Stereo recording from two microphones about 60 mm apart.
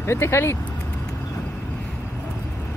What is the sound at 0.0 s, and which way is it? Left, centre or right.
Speech, left.